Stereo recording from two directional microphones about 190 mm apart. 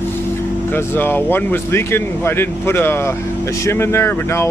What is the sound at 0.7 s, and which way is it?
Speech, 10° left (ahead or behind).